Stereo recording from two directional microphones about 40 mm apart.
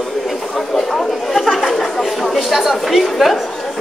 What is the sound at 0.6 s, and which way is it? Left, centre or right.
Chatter, centre.